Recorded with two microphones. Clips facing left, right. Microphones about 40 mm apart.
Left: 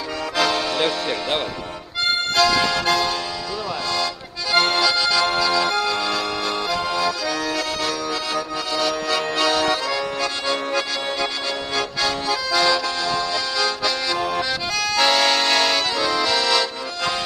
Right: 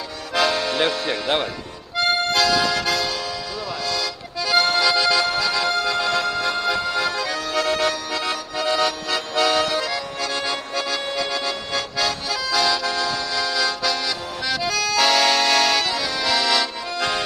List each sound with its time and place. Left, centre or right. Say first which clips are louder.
0.7 s speech: even; centre
2.0 s accordion: even; centre
2.7 s music: left 2 dB; centre
3.9 s accordion: left 2 dB; centre
4.7 s accordion: right 1 dB; centre
5.4 s music: left 2 dB; centre
6.5 s accordion: right 1 dB; centre
7.8 s accordion: right 1 dB; centre
12.1 s accordion: left 2 dB; centre